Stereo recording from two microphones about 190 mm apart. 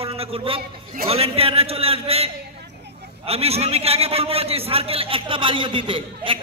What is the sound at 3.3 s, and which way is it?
A man's voice, 30° right (ahead or behind).